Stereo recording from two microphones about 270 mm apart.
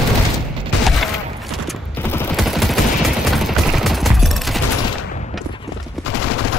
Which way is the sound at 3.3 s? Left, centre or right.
Centre.